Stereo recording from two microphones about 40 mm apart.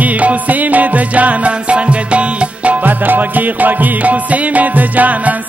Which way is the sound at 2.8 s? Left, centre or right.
Right.